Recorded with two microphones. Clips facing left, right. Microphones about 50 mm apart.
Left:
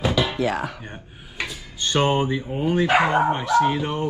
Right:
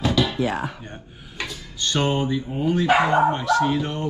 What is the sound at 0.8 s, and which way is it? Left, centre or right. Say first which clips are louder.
Speech: left 1 dB; centre.